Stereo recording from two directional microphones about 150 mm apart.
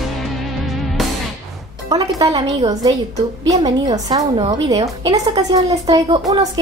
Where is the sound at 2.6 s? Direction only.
25° right (ahead or behind).